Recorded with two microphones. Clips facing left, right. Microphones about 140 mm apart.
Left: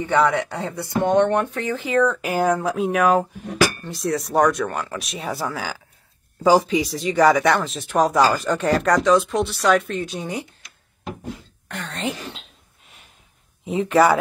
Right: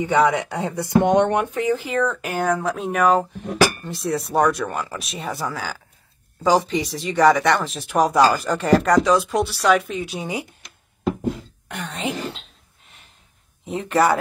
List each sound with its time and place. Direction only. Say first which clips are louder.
0.0 s speech: right 1 dB; 15° right (ahead or behind)
1.9 s speech: left 3 dB; centre (ahead or behind)
11.6 s speech: even; 10° right (ahead or behind)
13.7 s speech: left 2 dB; centre (ahead or behind)